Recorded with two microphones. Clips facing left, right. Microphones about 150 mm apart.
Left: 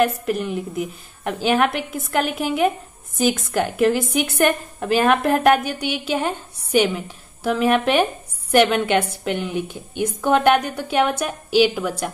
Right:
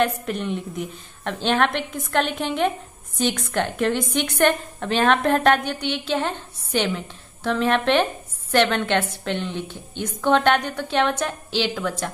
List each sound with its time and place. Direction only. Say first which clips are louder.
0.0 s a woman's voice: left 3 dB; 5° left (ahead or behind)